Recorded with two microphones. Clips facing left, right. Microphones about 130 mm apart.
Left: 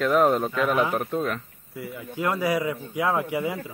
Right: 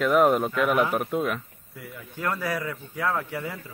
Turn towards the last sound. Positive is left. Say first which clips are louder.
# left 4 dB
turn(degrees=15)  # may be behind; listen again after turning